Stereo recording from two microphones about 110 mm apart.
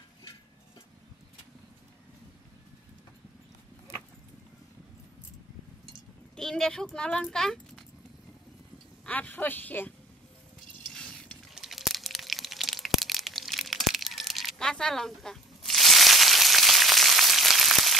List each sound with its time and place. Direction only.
6.3 s speech: 5° left (ahead or behind)
9.0 s speech: 15° left (ahead or behind)
10.9 s stir: 5° left (ahead or behind)
11.5 s a sound: centre (ahead or behind)